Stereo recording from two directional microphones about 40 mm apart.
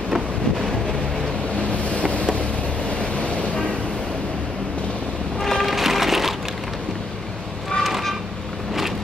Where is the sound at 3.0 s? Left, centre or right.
Left.